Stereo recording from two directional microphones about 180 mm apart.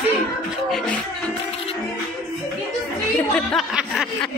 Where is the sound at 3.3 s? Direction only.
Centre (ahead or behind).